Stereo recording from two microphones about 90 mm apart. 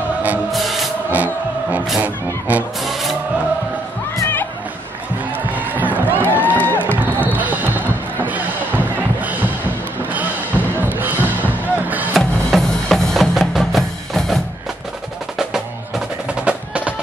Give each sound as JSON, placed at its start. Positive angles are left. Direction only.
{"t": 0.5, "sound": "music", "side_deg": 0}
{"t": 1.1, "sound": "music", "side_deg": -20}
{"t": 2.0, "sound": "honk", "side_deg": -15}
{"t": 2.8, "sound": "music", "side_deg": 0}
{"t": 5.8, "sound": "music", "side_deg": -20}
{"t": 6.9, "sound": "basketball bounce", "side_deg": -20}
{"t": 10.1, "sound": "music", "side_deg": -20}
{"t": 12.2, "sound": "music", "side_deg": 0}
{"t": 16.4, "sound": "music", "side_deg": -15}